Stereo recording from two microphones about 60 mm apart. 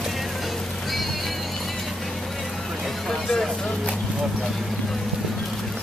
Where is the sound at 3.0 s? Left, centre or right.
Centre.